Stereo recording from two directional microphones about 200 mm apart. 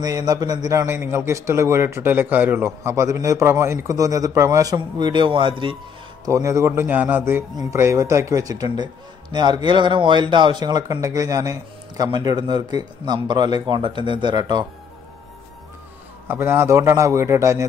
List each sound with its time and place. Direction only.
0.0 s a man's voice: 20° right (ahead or behind)
16.3 s a man's voice: 10° right (ahead or behind)